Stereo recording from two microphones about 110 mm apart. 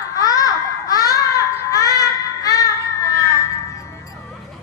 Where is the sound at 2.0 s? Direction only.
30° left (ahead or behind).